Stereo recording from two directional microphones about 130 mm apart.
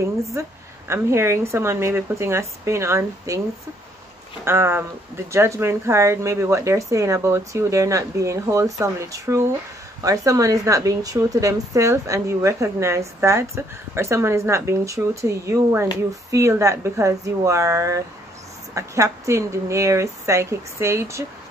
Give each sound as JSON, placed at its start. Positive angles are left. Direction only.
{"t": 0.0, "sound": "a woman's voice", "side_deg": -20}
{"t": 4.5, "sound": "a woman's voice", "side_deg": -20}